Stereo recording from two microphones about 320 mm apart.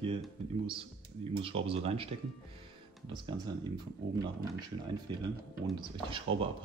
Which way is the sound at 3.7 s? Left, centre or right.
Centre.